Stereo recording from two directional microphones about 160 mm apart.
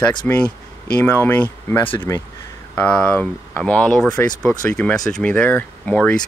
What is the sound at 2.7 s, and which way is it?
Speech, 5° left (ahead or behind).